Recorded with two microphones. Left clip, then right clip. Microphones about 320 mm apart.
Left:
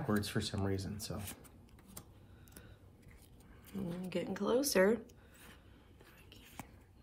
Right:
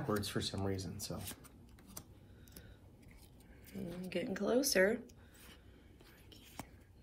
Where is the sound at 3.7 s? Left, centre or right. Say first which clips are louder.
Left 1 dB; centre.